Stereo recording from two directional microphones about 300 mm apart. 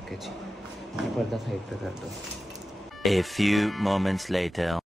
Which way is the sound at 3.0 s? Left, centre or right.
Centre.